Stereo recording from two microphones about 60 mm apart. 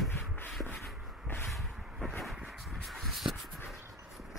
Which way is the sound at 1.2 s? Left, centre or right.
Left.